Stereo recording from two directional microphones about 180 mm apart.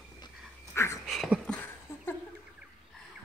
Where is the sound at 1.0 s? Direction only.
Centre (ahead or behind).